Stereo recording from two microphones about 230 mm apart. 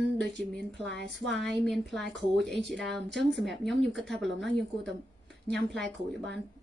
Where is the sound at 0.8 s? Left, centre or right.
Right.